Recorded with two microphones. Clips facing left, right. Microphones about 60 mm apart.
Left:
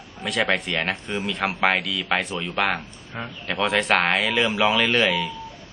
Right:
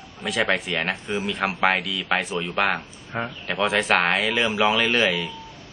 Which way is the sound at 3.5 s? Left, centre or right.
Centre.